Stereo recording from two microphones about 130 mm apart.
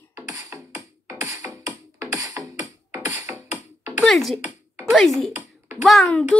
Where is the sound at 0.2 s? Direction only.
25° right (ahead or behind).